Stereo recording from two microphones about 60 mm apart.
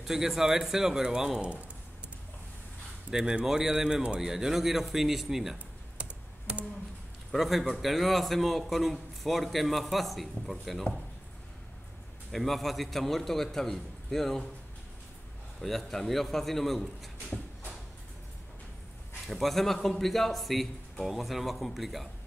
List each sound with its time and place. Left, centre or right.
0.0 s a man's voice: centre
3.1 s a man's voice: centre
5.9 s computer keyboard: centre
7.3 s a man's voice: centre
12.3 s a man's voice: centre
15.6 s a man's voice: centre
19.2 s a man's voice: centre